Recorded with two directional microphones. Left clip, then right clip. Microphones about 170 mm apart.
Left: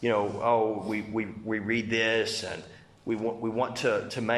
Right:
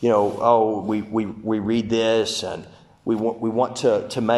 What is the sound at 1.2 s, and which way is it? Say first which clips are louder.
Speech: right 7 dB; 10° left (ahead or behind).